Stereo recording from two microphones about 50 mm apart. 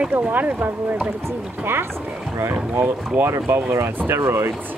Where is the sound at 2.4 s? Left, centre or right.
Right.